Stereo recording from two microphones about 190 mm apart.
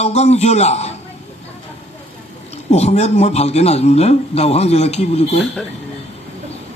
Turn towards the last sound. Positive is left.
turn(degrees=35)  # may be behind; listen again after turning